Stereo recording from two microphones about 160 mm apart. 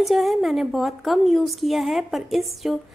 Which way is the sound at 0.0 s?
Centre (ahead or behind).